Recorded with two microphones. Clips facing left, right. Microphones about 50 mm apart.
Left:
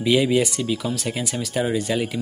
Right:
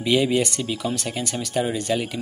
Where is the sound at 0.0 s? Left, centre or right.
Centre.